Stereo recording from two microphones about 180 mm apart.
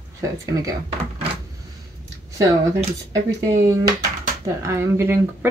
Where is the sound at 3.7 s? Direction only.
20° right (ahead or behind).